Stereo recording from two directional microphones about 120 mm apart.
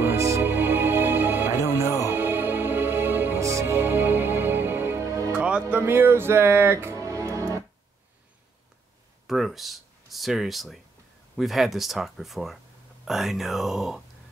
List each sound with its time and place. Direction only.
0.0 s music: 20° right (ahead or behind)
1.6 s music: 25° left (ahead or behind)
2.0 s music: 15° right (ahead or behind)
5.3 s music: 10° right (ahead or behind); by 7.6 s 25° right (ahead or behind)
9.3 s a sound: centre (ahead or behind)
11.3 s speech: centre (ahead or behind)